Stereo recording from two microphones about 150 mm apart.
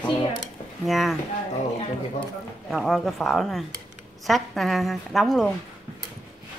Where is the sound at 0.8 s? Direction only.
Centre (ahead or behind).